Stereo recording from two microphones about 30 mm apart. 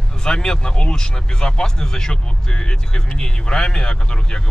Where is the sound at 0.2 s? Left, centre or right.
Left.